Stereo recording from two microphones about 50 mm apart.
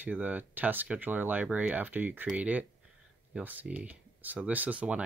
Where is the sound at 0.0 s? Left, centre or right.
Right.